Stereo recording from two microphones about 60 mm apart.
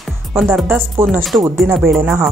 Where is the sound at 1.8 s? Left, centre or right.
Right.